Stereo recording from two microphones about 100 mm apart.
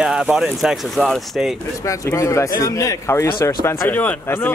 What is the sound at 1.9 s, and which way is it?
Speech, 35° left (ahead or behind).